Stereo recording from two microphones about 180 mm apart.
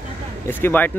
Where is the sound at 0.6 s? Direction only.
10° left (ahead or behind).